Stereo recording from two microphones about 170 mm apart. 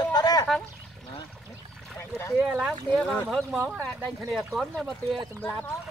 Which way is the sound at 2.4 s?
5° right (ahead or behind).